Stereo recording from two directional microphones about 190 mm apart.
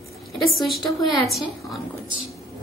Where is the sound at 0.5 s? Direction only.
Centre (ahead or behind).